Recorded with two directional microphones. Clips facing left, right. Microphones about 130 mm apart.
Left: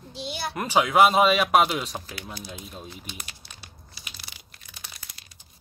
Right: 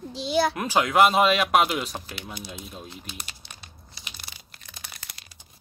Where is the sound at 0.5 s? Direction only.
Centre (ahead or behind).